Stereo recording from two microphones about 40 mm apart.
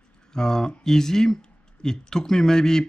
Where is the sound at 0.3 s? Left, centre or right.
Centre.